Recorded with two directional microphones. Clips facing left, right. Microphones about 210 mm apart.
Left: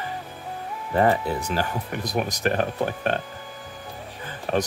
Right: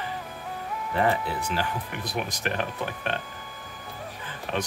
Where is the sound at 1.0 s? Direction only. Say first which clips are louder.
Left 5 dB; 40° left (ahead or behind).